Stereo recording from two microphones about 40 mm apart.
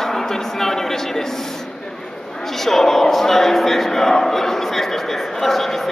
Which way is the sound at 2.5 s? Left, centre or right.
Centre.